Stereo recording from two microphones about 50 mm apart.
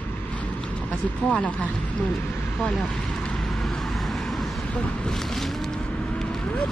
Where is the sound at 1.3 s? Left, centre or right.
Left.